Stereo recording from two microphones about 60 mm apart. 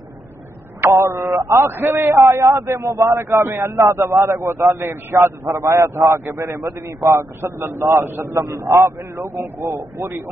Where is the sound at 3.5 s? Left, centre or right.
Right.